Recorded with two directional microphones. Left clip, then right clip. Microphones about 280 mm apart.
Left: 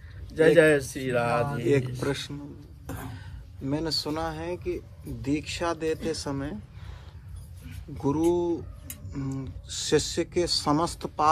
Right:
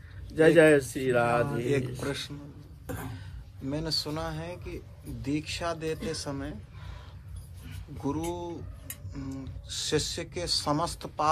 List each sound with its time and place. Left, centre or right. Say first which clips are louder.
0.4 s speech: left 1 dB; centre
1.5 s speech: left 4 dB; left
8.0 s speech: left 8 dB; left